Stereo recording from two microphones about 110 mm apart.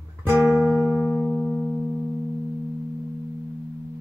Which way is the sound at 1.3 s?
15° left (ahead or behind).